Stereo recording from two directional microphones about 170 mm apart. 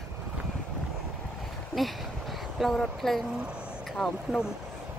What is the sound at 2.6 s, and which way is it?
Speech, centre (ahead or behind).